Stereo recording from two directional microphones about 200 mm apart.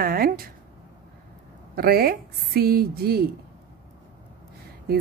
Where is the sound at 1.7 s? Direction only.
50° right (ahead or behind).